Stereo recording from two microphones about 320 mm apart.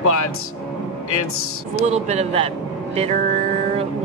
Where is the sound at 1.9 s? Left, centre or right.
Right.